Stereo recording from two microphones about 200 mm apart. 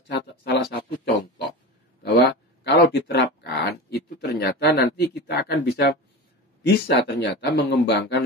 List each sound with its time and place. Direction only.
0.1 s speech: 55° left (ahead or behind)
2.0 s a sound: 60° left (ahead or behind)
6.6 s speech: 60° left (ahead or behind)